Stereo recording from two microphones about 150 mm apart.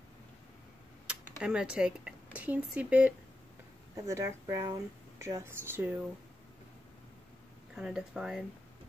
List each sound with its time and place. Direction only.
1.0 s speech: 5° right (ahead or behind)
3.9 s speech: 20° right (ahead or behind)
7.7 s speech: 5° right (ahead or behind)